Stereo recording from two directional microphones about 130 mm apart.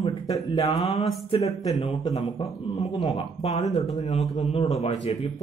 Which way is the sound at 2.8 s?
60° left (ahead or behind).